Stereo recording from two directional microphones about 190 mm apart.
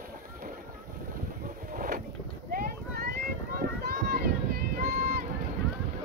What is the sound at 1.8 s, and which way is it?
Boat, 45° right (ahead or behind).